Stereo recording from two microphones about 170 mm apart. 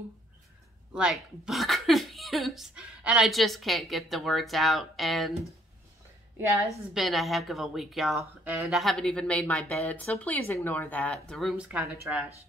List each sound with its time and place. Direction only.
0.9 s speech: 5° right (ahead or behind)
6.3 s a woman's voice: 15° right (ahead or behind)
6.9 s a woman's voice: centre (ahead or behind)